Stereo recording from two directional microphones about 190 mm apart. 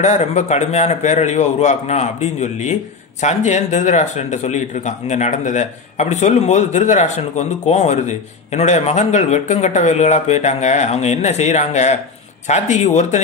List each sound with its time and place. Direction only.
0.0 s a man's voice: 35° left (ahead or behind)